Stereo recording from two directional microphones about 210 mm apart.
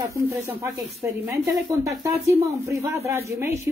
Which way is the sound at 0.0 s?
15° right (ahead or behind).